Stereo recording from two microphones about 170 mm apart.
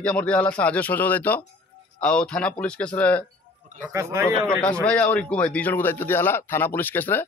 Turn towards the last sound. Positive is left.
turn(degrees=10)  # may be behind; listen again after turning